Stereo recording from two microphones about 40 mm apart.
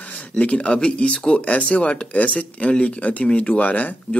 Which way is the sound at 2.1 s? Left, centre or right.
Left.